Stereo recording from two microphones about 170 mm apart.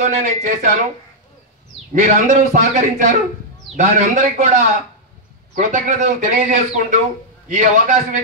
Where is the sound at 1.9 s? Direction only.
50° right (ahead or behind).